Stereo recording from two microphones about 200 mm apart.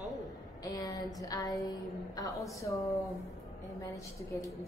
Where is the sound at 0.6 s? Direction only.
20° left (ahead or behind).